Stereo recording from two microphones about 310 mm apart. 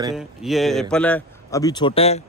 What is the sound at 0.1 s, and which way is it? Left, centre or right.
Speech, centre.